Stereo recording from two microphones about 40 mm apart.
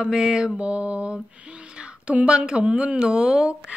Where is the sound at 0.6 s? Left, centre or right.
Right.